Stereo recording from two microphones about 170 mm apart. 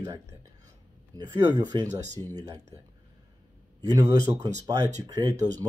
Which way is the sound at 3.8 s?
20° right (ahead or behind).